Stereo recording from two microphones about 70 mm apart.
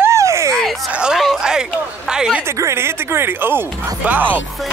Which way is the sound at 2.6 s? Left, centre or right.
Right.